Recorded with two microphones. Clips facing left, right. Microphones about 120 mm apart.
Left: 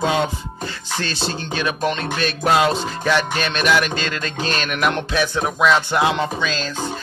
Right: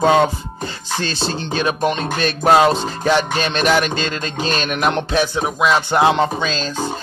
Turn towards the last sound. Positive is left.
turn(degrees=-30)  # may be behind; listen again after turning